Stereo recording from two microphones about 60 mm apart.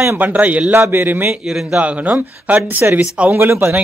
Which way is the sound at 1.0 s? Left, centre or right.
Right.